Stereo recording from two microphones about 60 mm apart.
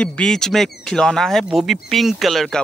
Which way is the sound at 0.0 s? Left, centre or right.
Centre.